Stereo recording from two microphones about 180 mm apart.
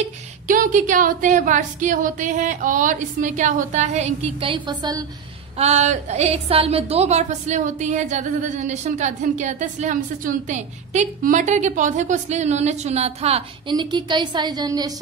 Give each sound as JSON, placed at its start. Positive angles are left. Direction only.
{"t": 0.0, "sound": "a woman's voice", "side_deg": -45}
{"t": 5.6, "sound": "a woman's voice", "side_deg": -40}